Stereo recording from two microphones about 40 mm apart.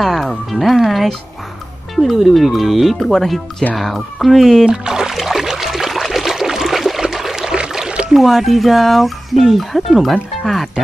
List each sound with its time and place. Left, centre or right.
0.0 s speech: centre
2.1 s speech: centre
4.6 s speech: centre
5.1 s a sound: centre
8.1 s speech: centre